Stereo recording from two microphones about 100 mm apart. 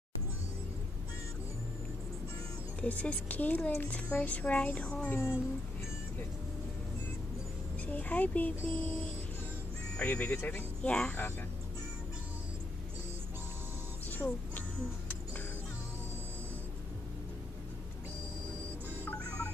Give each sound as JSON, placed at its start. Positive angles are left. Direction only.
{"t": 2.8, "sound": "speech", "side_deg": 15}
{"t": 7.8, "sound": "speech", "side_deg": 15}